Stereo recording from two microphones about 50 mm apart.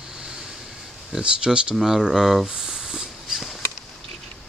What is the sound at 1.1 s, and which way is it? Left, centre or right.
Speech, centre.